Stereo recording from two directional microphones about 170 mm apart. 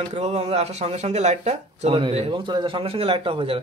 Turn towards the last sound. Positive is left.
turn(degrees=-35)  # may be behind; listen again after turning